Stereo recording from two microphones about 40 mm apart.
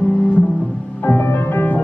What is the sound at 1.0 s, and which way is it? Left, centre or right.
Music, left.